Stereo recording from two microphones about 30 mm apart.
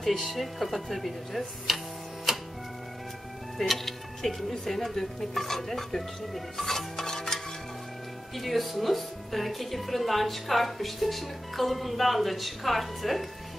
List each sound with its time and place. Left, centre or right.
0.0 s a woman's voice: centre
2.3 s music: centre
3.5 s speech: centre
7.0 s stir: centre
8.4 s a woman's voice: centre